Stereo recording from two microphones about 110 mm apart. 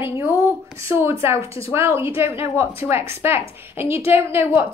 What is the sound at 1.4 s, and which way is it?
Speech, 60° left (ahead or behind).